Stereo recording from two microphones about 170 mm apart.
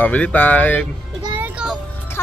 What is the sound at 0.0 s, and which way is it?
Speech, 10° left (ahead or behind).